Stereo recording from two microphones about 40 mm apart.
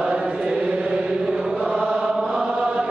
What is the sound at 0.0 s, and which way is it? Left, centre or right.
Chant, right.